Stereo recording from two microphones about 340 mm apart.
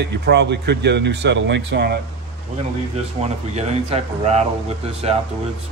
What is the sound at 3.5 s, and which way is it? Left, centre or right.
Speech, centre.